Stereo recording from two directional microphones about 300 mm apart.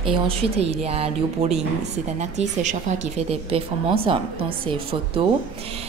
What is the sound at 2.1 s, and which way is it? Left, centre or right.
A woman's voice, right.